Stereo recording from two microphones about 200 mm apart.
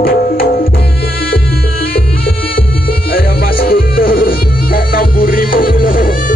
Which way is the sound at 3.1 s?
50° left (ahead or behind).